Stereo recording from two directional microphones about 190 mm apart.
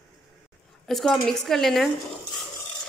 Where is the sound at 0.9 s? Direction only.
Centre (ahead or behind).